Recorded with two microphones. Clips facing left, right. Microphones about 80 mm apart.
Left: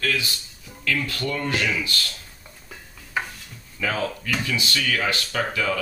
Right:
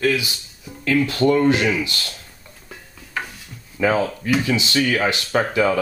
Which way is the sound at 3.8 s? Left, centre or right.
Right.